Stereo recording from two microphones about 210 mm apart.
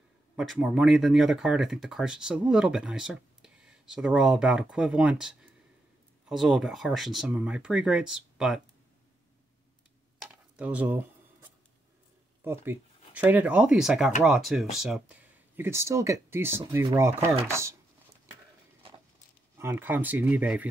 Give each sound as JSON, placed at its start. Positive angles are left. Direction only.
{"t": 0.4, "sound": "speech", "side_deg": 0}
{"t": 10.5, "sound": "a sound", "side_deg": -5}
{"t": 12.4, "sound": "speech", "side_deg": -10}
{"t": 19.6, "sound": "speech", "side_deg": -10}